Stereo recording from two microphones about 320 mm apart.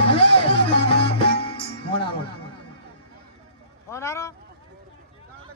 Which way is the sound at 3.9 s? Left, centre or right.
Centre.